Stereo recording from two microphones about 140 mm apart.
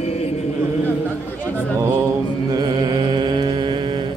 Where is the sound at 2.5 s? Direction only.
30° right (ahead or behind).